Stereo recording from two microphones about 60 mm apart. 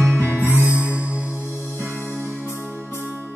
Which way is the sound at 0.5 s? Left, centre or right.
Right.